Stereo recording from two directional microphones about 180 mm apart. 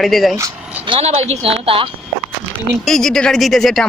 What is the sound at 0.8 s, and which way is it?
A woman's voice, 30° right (ahead or behind).